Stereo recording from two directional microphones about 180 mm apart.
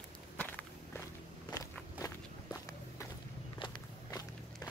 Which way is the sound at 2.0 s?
20° left (ahead or behind).